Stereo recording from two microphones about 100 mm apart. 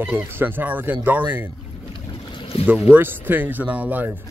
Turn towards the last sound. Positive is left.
turn(degrees=-15)  # may be behind; listen again after turning